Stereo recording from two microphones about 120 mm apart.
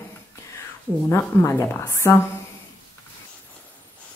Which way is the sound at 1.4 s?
20° left (ahead or behind).